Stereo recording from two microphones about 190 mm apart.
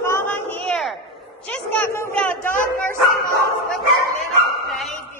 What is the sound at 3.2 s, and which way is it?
Dog, 50° left (ahead or behind).